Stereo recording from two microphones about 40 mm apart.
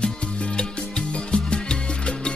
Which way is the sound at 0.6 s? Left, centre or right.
Left.